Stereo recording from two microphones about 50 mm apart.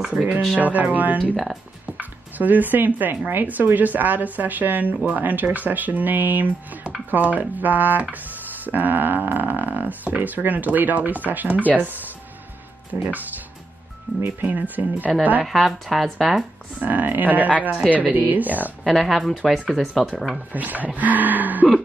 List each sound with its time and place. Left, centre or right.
0.1 s speech: right
15.4 s speech: centre
16.8 s speech: right
18.9 s speech: centre
20.5 s speech: right